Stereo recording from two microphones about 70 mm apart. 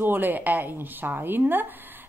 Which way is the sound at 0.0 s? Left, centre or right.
Right.